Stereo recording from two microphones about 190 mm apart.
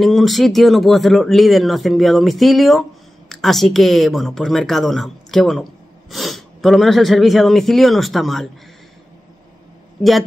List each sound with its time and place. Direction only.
0.0 s speech: centre (ahead or behind)